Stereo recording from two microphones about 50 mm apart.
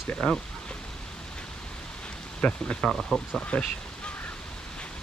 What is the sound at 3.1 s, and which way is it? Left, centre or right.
Speech, centre.